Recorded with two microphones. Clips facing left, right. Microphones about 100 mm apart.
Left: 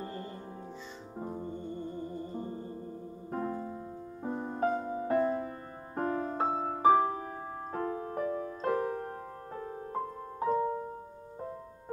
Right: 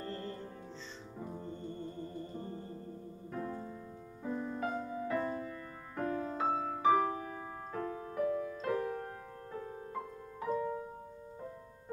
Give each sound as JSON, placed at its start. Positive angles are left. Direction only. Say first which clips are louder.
{"t": 0.0, "sound": "music", "louder": "left 1 dB", "side_deg": 15}
{"t": 1.4, "sound": "music", "louder": "left 4 dB", "side_deg": 15}
{"t": 3.3, "sound": "music", "louder": "left 5 dB", "side_deg": 45}